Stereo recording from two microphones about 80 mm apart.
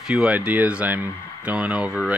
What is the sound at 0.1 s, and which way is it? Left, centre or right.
Speech, centre.